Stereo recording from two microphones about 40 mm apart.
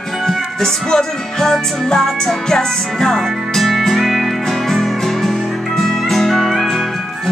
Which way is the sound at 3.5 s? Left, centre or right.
Centre.